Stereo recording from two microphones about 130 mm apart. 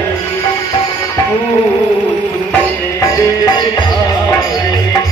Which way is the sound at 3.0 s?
30° left (ahead or behind).